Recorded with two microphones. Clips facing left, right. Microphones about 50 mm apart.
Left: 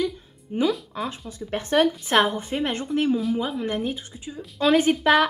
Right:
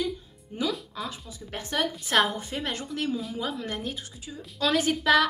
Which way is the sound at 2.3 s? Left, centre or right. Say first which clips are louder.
Left 6 dB; left.